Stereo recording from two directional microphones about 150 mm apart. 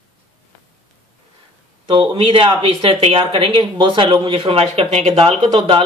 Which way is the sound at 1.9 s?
35° right (ahead or behind).